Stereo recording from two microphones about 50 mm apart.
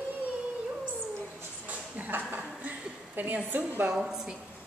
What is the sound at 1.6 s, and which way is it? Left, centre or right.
A woman's voice, right.